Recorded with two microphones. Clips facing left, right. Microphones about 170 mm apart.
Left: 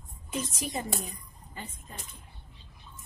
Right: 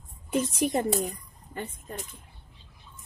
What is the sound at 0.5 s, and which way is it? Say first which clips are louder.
A woman's voice: right 9 dB; 55° right (ahead or behind).